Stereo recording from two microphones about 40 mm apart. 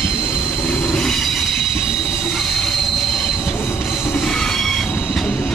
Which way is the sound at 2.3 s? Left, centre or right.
Centre.